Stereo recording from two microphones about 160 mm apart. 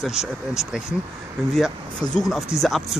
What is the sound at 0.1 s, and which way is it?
Speech, 45° left (ahead or behind).